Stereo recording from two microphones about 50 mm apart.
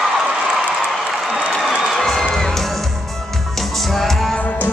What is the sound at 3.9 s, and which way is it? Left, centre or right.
Music, centre.